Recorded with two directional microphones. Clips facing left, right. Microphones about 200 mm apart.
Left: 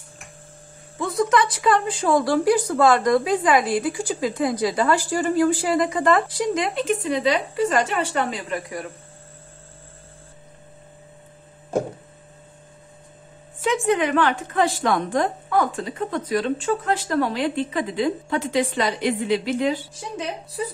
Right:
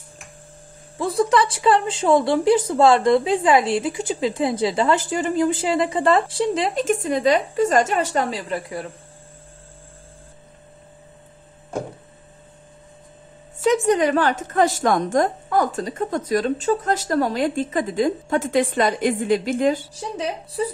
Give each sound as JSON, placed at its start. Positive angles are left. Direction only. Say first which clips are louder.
{"t": 1.0, "sound": "speech", "louder": "right 2 dB", "side_deg": -30}
{"t": 13.7, "sound": "a woman's voice", "louder": "right 3 dB", "side_deg": -40}